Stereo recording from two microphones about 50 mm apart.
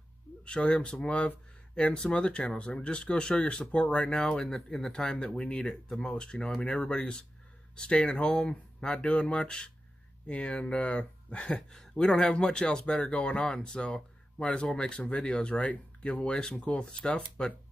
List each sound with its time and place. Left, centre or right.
0.5 s speech: left; by 5.0 s centre
5.0 s speech: centre
5.7 s speech: centre